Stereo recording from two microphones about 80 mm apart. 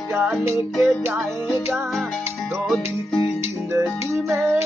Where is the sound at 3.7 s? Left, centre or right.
Right.